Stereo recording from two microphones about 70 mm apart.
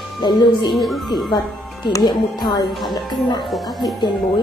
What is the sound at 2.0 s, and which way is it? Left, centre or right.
Speech, left.